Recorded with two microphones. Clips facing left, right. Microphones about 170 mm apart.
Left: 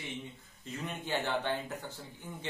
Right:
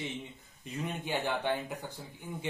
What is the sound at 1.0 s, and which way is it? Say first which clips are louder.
Speech: even; 15° right (ahead or behind).